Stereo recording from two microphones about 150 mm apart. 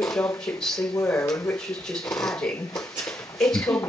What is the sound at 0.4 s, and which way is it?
Speech, 5° left (ahead or behind).